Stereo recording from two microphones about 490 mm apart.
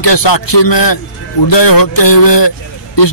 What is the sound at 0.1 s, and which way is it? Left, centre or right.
Speech, left.